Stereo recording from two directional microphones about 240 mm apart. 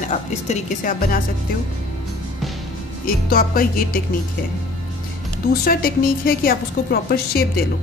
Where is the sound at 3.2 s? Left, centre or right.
Left.